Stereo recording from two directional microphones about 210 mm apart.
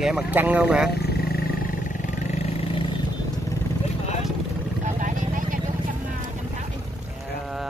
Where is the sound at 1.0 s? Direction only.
45° left (ahead or behind).